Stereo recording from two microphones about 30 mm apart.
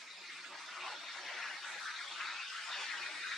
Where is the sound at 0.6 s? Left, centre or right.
Centre.